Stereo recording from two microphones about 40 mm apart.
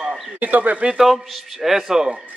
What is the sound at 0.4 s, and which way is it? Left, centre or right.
Speech, right.